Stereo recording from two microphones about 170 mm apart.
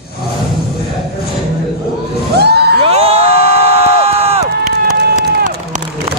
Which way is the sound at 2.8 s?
35° right (ahead or behind).